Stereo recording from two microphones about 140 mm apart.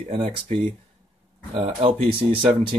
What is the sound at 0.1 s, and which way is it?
Speech, 45° right (ahead or behind).